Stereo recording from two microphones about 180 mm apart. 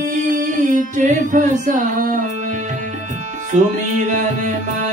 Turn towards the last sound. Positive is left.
turn(degrees=-45)  # may be behind; listen again after turning